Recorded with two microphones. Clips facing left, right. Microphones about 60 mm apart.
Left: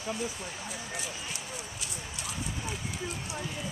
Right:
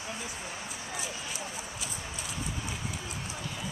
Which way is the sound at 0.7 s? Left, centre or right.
Centre.